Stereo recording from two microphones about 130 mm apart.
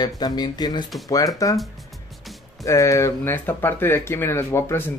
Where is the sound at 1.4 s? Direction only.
25° left (ahead or behind).